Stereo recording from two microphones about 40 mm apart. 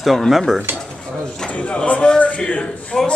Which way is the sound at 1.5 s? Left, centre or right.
Left.